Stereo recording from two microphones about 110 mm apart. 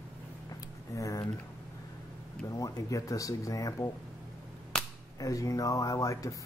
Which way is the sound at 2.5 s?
30° left (ahead or behind).